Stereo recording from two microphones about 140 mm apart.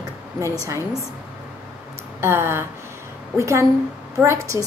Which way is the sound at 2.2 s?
15° right (ahead or behind).